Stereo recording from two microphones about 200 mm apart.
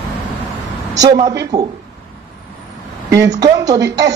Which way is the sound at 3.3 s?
20° right (ahead or behind).